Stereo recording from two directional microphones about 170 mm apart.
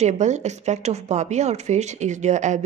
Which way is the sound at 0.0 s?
45° right (ahead or behind).